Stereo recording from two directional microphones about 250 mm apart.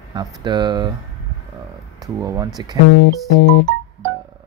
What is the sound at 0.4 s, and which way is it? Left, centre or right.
Speech, centre.